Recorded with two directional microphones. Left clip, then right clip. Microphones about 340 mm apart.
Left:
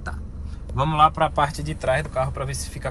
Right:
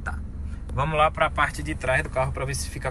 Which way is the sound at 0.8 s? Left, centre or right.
Centre.